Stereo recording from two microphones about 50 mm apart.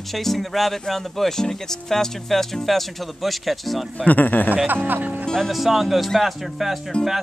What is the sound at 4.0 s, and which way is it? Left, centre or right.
Speech, left.